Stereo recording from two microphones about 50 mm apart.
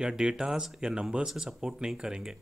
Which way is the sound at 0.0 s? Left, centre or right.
Centre.